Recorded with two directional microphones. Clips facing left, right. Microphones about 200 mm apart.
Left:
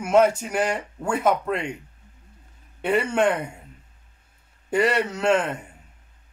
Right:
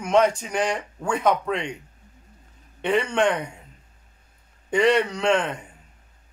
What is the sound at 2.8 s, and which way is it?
Speech, 5° left (ahead or behind).